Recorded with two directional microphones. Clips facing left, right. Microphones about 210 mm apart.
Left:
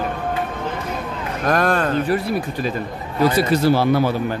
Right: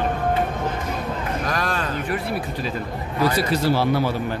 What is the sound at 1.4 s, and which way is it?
Speech, 55° left (ahead or behind).